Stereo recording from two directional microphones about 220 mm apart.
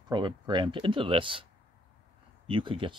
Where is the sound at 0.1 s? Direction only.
20° right (ahead or behind).